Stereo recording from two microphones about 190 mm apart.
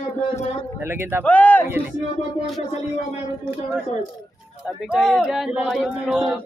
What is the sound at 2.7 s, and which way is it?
Speech, 35° left (ahead or behind).